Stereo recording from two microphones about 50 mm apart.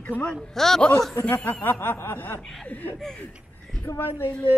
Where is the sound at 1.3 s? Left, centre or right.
Left.